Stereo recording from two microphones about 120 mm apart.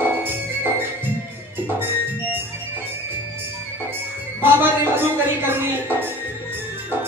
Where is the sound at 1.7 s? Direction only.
15° right (ahead or behind).